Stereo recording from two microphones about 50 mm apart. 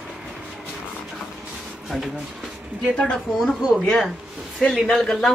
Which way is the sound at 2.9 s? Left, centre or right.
Centre.